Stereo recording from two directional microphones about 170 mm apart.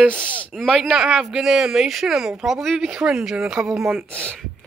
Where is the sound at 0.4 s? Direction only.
Centre (ahead or behind).